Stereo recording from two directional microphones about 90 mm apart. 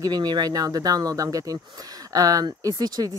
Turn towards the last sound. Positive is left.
turn(degrees=-50)  # may be behind; listen again after turning